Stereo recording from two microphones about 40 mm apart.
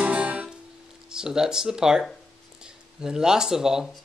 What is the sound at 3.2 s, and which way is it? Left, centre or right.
Speech, centre.